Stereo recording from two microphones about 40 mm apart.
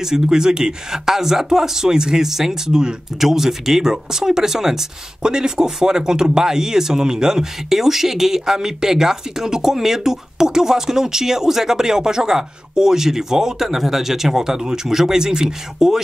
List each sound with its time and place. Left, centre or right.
0.0 s speech: centre
3.2 s speech: centre